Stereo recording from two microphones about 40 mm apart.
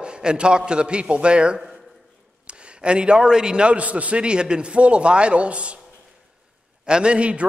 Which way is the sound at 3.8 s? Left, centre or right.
Right.